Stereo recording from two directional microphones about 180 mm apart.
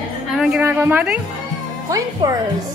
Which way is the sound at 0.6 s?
10° right (ahead or behind).